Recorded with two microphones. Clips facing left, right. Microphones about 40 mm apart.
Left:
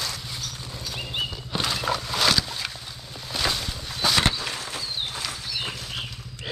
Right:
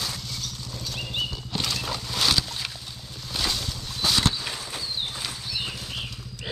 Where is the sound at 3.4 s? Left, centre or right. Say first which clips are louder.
Left 2 dB; centre.